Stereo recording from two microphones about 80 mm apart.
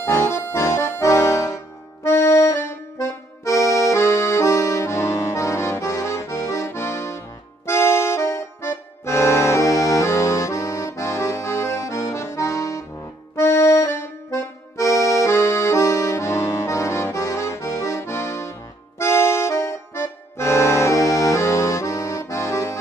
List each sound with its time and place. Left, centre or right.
0.0 s accordion: left
0.5 s music: left
2.0 s accordion: left